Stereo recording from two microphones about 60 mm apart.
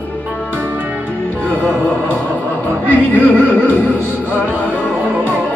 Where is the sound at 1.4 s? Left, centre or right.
Left.